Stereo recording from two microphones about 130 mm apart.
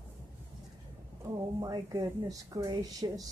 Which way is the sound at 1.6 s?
25° right (ahead or behind).